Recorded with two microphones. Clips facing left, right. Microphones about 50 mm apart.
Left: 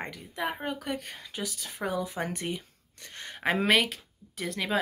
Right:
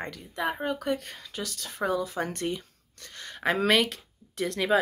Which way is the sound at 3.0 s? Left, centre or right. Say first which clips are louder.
Even; left.